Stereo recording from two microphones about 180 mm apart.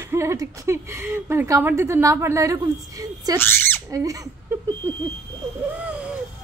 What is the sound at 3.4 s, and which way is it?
Speech, 10° left (ahead or behind).